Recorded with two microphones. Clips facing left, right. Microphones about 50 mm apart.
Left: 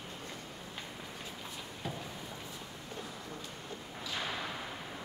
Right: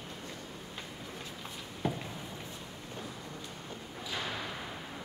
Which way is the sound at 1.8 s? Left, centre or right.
Right.